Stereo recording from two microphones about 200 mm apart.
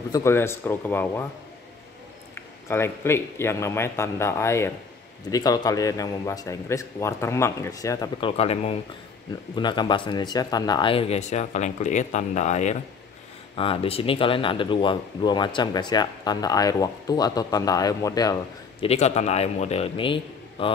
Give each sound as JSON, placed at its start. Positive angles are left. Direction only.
{"t": 0.1, "sound": "a man's voice", "side_deg": 10}
{"t": 2.7, "sound": "a man's voice", "side_deg": 10}
{"t": 18.9, "sound": "a man's voice", "side_deg": 35}